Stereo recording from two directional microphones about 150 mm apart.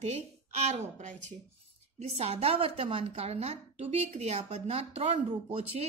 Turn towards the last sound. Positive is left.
turn(degrees=-45)  # may be behind; listen again after turning